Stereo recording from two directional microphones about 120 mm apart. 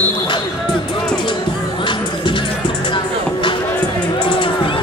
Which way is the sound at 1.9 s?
45° left (ahead or behind).